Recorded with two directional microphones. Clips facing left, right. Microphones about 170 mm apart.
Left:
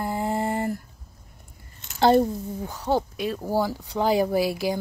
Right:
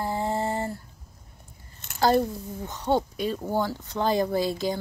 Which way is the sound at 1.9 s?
25° left (ahead or behind).